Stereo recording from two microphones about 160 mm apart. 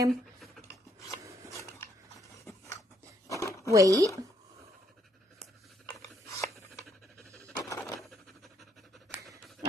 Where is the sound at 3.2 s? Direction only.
20° left (ahead or behind).